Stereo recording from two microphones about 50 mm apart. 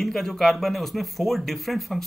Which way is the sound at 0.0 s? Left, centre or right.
Centre.